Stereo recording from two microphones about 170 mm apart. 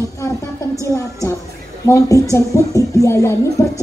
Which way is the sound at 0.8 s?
20° left (ahead or behind).